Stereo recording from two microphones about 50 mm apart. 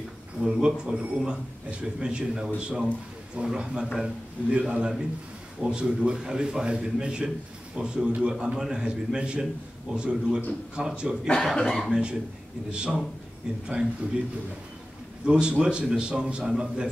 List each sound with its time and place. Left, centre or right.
0.4 s a man's voice: centre
11.4 s speech: centre
11.9 s a man's voice: centre
15.2 s a man's voice: right